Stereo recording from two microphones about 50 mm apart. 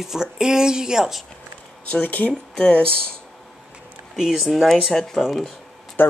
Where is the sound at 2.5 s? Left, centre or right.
Centre.